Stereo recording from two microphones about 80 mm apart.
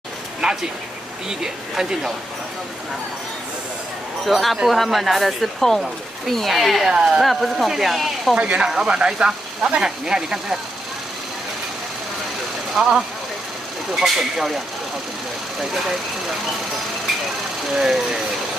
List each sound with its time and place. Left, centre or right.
0.4 s a sound: centre
1.4 s speech: centre
4.3 s speech: centre
8.4 s speech: centre
12.8 s speech: centre
13.9 s speech: centre
17.7 s speech: centre